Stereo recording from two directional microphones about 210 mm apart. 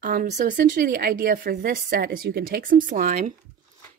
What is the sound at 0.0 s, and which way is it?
Speech, 40° right (ahead or behind).